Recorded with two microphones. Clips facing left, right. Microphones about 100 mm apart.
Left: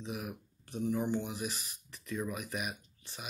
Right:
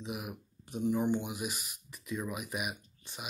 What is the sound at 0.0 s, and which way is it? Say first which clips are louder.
Speech: even; 10° right (ahead or behind).